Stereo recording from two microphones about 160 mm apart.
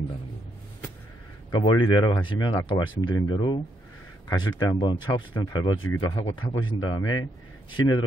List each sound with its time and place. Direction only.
1.5 s speech: 25° left (ahead or behind)